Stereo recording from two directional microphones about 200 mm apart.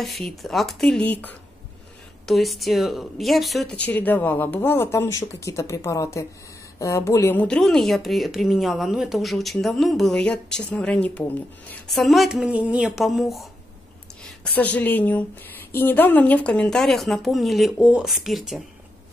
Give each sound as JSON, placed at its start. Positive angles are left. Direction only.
{"t": 0.0, "sound": "speech", "side_deg": 0}